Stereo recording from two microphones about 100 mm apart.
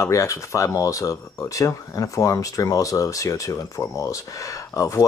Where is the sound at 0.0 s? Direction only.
30° left (ahead or behind).